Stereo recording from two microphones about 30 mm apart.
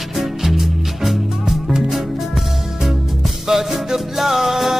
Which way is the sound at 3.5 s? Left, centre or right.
Centre.